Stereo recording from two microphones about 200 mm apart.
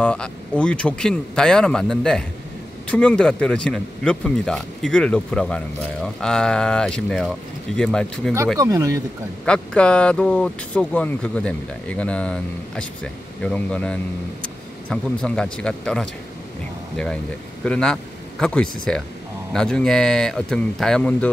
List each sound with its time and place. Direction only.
0.0 s speech: 5° left (ahead or behind)
8.5 s speech: 15° right (ahead or behind)
9.5 s speech: 5° left (ahead or behind)